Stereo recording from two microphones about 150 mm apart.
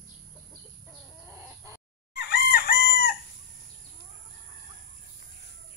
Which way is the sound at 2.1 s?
90° left.